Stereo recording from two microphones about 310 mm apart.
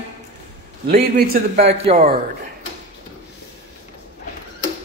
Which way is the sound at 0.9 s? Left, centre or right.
Right.